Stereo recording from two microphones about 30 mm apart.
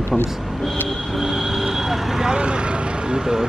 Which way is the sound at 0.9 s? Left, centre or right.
Centre.